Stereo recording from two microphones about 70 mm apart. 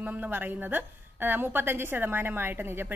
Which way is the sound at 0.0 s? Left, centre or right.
Right.